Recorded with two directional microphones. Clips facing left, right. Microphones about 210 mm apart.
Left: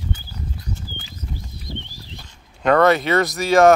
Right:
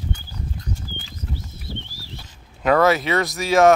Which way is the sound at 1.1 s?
15° left (ahead or behind).